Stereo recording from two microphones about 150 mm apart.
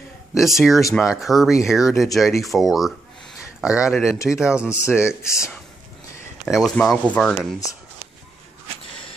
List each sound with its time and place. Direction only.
0.3 s speech: centre (ahead or behind)
5.2 s speech: 20° left (ahead or behind)
6.4 s speech: centre (ahead or behind)